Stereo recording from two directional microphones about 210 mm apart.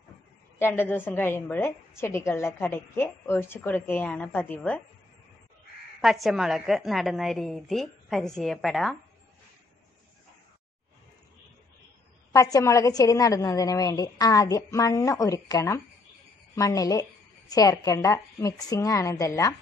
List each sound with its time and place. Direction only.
0.6 s a woman's voice: 10° left (ahead or behind)
5.9 s a woman's voice: centre (ahead or behind)
12.3 s a woman's voice: 15° left (ahead or behind)